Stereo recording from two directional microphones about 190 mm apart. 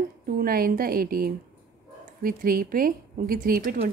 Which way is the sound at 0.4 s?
50° right (ahead or behind).